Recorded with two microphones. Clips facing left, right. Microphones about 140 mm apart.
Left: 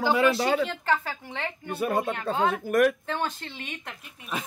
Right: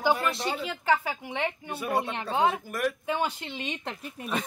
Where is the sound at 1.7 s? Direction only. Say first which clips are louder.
Left 4 dB; 45° left (ahead or behind).